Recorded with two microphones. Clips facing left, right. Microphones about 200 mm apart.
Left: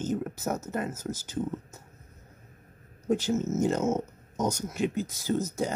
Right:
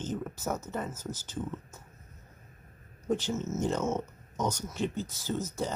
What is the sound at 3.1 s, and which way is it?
Speech, 10° left (ahead or behind).